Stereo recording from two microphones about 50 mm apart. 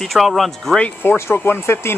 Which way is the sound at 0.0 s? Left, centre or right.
Centre.